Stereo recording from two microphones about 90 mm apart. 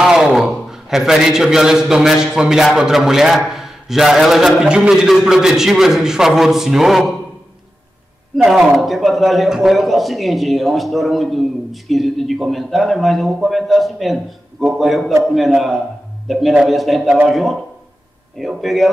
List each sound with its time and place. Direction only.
0.1 s a man's voice: 5° right (ahead or behind)
8.4 s a man's voice: 5° right (ahead or behind)